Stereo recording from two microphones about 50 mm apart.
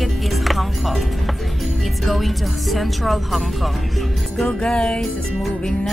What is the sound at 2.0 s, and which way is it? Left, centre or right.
Speech, centre.